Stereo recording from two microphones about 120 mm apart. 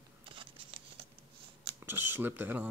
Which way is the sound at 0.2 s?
45° right (ahead or behind).